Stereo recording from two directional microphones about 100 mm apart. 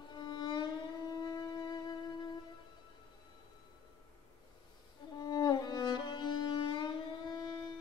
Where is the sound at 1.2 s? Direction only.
40° left (ahead or behind).